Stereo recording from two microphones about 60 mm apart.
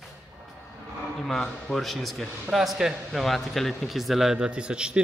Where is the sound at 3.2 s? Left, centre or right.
Centre.